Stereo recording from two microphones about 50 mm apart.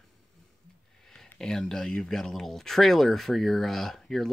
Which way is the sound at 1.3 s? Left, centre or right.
Centre.